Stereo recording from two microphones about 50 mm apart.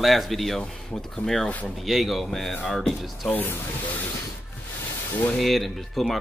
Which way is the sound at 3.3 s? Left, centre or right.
Left.